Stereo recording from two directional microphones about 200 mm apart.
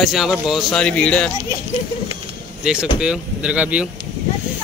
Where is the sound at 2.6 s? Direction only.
5° right (ahead or behind).